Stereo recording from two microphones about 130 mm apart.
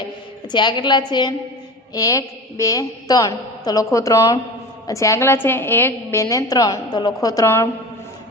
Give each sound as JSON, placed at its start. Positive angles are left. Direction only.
{"t": 0.5, "sound": "a woman's voice", "side_deg": 35}
{"t": 7.4, "sound": "a woman's voice", "side_deg": 15}